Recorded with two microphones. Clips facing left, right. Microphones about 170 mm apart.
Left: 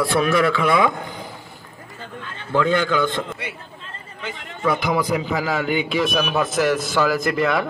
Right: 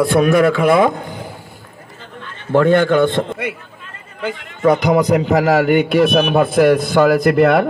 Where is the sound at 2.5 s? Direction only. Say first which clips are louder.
Right 7 dB; 55° right (ahead or behind).